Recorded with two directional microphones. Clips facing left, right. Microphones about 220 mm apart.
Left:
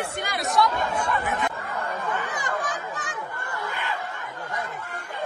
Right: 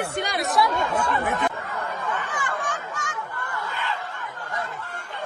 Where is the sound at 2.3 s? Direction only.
40° left (ahead or behind).